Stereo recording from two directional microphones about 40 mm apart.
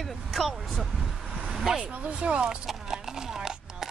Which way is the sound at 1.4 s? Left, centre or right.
Centre.